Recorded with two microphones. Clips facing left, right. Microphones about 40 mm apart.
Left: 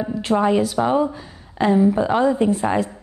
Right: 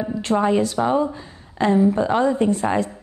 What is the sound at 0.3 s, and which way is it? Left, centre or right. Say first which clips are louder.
Speech: left 1 dB; centre.